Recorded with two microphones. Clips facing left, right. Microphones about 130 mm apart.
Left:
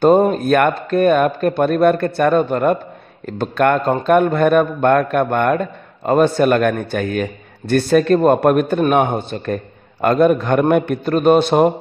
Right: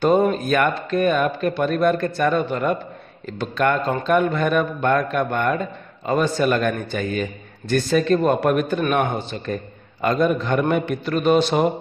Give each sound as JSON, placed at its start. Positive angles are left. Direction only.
{"t": 0.0, "sound": "a man's voice", "side_deg": 45}